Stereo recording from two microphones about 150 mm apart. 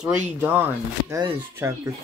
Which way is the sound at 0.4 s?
15° right (ahead or behind).